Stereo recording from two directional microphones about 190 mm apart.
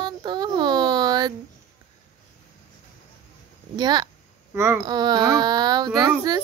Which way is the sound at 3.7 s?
20° right (ahead or behind).